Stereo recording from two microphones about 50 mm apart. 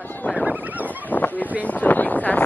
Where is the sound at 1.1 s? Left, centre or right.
Left.